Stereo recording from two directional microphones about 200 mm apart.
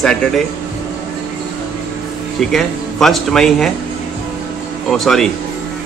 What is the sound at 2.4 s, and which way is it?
A man's voice, centre (ahead or behind).